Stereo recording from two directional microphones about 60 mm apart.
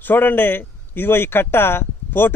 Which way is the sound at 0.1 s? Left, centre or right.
Left.